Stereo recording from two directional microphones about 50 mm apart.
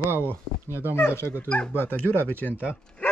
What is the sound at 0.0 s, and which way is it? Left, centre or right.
Speech, right.